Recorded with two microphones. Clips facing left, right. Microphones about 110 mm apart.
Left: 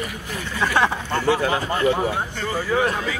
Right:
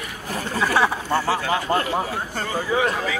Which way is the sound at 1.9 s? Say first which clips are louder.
Left 1 dB; 40° right (ahead or behind).